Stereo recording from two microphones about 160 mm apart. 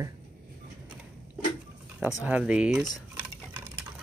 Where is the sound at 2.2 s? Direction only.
10° right (ahead or behind).